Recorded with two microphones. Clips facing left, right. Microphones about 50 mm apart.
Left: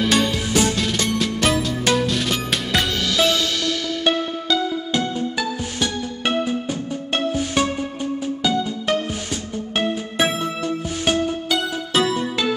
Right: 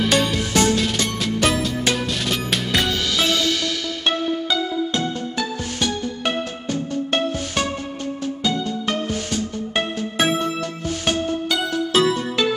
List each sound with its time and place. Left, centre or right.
0.1 s music: centre
4.9 s music: centre
10.1 s music: centre